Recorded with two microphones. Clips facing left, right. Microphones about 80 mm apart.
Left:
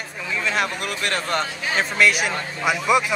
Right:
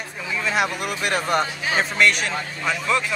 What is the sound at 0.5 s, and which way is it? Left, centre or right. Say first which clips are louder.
Speech: right 2 dB; centre.